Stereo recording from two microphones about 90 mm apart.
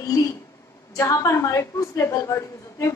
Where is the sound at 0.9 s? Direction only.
35° left (ahead or behind).